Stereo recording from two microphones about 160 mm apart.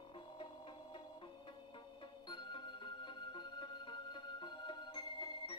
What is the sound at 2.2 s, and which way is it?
Music, 30° left (ahead or behind).